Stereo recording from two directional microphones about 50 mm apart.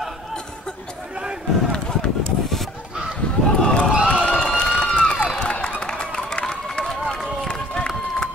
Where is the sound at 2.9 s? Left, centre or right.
Centre.